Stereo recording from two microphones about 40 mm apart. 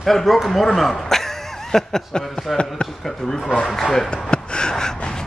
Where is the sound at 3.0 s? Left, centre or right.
Centre.